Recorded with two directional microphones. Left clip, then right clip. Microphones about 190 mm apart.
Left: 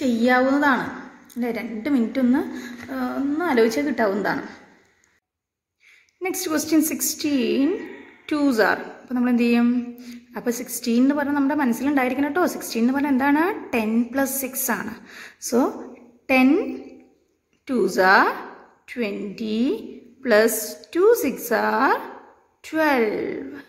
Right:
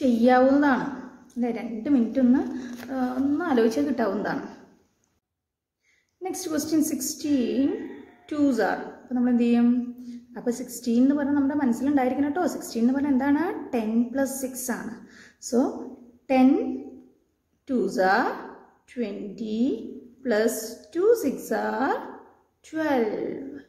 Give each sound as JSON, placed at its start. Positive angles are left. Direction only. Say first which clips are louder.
{"t": 0.0, "sound": "a woman's voice", "louder": "even", "side_deg": 15}
{"t": 6.2, "sound": "a woman's voice", "louder": "left 5 dB", "side_deg": 20}
{"t": 17.6, "sound": "a woman's voice", "louder": "left 5 dB", "side_deg": 25}